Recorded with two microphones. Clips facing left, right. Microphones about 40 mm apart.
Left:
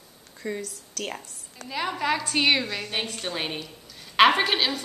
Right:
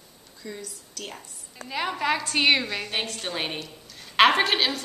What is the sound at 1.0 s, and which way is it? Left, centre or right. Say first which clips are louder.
Speech: left 5 dB; left.